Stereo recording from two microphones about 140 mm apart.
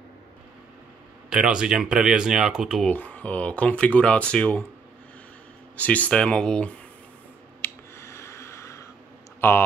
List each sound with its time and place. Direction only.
1.3 s speech: 5° right (ahead or behind)
2.9 s speech: 10° left (ahead or behind)
5.8 s speech: 10° left (ahead or behind)
7.6 s a sound: 20° left (ahead or behind)
9.4 s speech: 15° left (ahead or behind)